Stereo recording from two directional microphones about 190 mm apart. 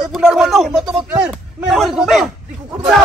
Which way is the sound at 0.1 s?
Centre (ahead or behind).